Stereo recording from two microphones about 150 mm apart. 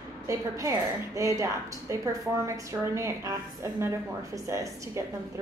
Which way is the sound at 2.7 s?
20° right (ahead or behind).